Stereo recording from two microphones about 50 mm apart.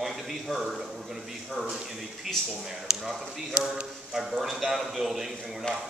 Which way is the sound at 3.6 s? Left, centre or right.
Right.